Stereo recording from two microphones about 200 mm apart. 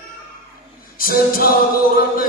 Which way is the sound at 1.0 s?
45° left (ahead or behind).